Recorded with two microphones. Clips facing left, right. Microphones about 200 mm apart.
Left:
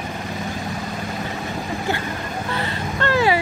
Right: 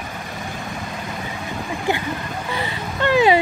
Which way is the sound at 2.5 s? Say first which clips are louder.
Even; 15° right (ahead or behind).